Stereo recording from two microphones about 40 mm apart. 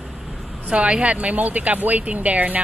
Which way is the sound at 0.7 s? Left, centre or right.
Right.